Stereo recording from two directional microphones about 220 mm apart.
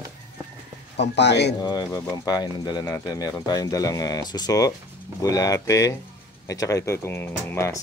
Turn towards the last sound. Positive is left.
turn(degrees=10)  # may be behind; listen again after turning